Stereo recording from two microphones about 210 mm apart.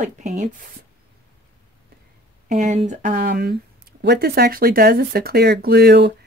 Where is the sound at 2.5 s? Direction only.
35° right (ahead or behind); by 6.1 s 50° right (ahead or behind).